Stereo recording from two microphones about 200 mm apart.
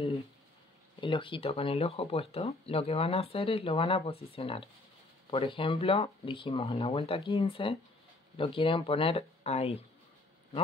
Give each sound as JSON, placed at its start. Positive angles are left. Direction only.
{"t": 1.0, "sound": "speech", "side_deg": 25}